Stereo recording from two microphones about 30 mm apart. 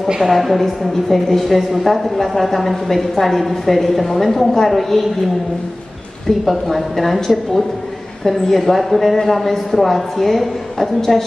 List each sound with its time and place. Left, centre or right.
0.3 s a woman's voice: centre
6.5 s a woman's voice: centre
8.2 s a man's voice: centre